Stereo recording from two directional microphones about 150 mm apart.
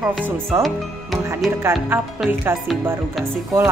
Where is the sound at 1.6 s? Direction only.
15° right (ahead or behind).